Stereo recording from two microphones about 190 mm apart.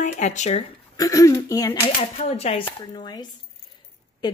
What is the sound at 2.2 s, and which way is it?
A woman's voice, 35° left (ahead or behind).